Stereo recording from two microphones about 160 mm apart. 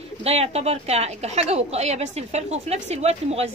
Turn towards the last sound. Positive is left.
turn(degrees=-40)  # may be behind; listen again after turning